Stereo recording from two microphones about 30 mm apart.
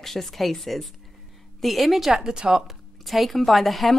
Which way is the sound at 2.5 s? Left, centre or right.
Centre.